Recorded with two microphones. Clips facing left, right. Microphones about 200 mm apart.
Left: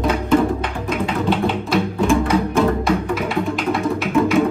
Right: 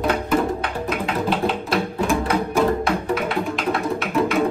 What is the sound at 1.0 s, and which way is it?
Music, centre (ahead or behind).